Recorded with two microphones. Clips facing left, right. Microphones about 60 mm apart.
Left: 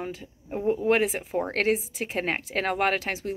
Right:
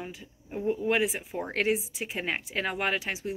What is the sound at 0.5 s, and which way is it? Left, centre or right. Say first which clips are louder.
A woman's voice: left 4 dB; left.